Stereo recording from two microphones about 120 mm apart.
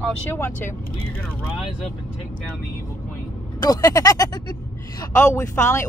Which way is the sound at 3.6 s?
30° left (ahead or behind).